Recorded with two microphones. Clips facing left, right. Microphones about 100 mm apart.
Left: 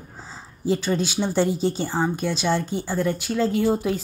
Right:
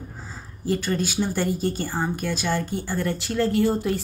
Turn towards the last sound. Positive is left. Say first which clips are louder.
# even
turn(degrees=5)  # may be behind; listen again after turning